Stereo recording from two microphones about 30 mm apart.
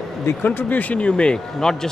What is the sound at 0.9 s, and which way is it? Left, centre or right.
Speech, left.